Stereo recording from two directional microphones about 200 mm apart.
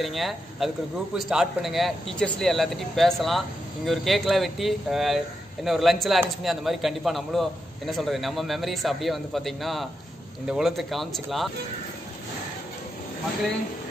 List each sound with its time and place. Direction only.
0.0 s speech: centre (ahead or behind)